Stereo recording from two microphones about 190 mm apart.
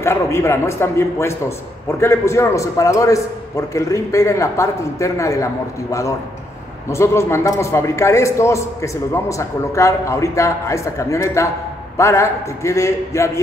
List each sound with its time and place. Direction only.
0.0 s a man's voice: 15° left (ahead or behind)